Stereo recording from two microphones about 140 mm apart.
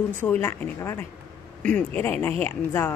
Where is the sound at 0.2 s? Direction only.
15° left (ahead or behind).